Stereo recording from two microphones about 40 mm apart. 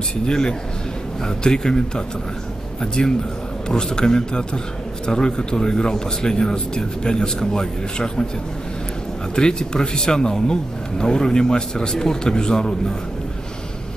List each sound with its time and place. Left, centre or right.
0.3 s a man's voice: centre
9.3 s speech: centre